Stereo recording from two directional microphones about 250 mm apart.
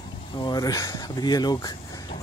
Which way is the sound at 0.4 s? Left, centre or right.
Centre.